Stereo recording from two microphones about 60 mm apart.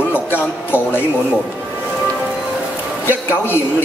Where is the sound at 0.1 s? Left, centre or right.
Left.